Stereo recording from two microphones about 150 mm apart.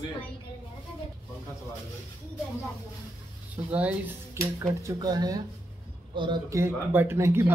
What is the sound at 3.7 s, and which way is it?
Speech, 10° right (ahead or behind).